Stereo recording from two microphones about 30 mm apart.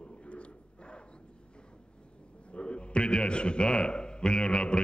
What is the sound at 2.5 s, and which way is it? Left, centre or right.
A man's voice, left.